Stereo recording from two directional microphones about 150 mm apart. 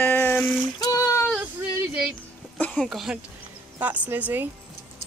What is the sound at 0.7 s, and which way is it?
Child singing, 25° left (ahead or behind).